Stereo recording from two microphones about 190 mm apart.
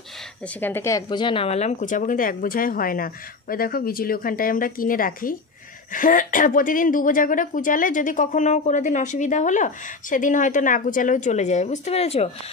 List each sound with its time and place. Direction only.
0.6 s a woman's voice: 10° left (ahead or behind); by 12.3 s 35° left (ahead or behind)